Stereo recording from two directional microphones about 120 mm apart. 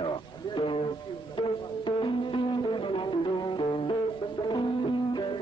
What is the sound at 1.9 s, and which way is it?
Music, 45° left (ahead or behind).